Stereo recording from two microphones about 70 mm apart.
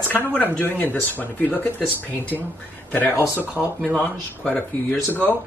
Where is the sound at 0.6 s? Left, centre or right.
Left.